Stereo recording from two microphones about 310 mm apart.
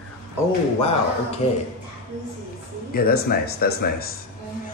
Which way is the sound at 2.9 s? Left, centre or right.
Left.